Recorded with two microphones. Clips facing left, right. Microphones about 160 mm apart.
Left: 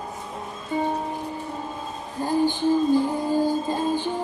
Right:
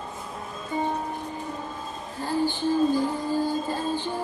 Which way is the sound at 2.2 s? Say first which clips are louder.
Left 4 dB; 15° left (ahead or behind).